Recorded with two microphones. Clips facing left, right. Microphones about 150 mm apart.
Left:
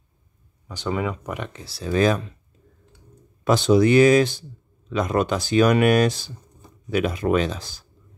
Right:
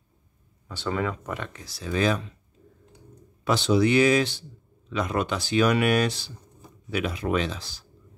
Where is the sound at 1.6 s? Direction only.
35° left (ahead or behind).